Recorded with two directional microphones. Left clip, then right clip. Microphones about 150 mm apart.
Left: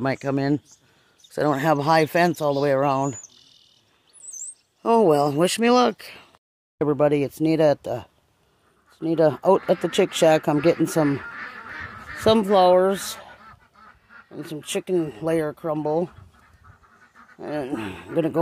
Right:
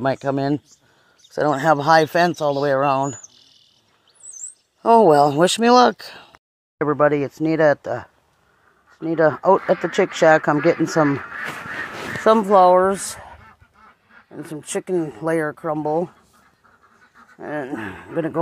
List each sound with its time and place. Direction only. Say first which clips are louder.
0.0 s speech: right 4 dB; 5° left (ahead or behind)
4.8 s speech: right 5 dB; 10° right (ahead or behind)
6.8 s speech: right 3 dB; 10° left (ahead or behind)
12.2 s speech: right 3 dB; 10° left (ahead or behind)
12.4 s speech: right 3 dB; 10° right (ahead or behind)
14.3 s speech: right 1 dB; 15° right (ahead or behind)
17.4 s speech: right 1 dB; 5° right (ahead or behind); by 18.4 s 10° left (ahead or behind)